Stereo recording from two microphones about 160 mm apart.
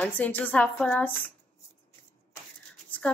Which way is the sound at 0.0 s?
10° left (ahead or behind).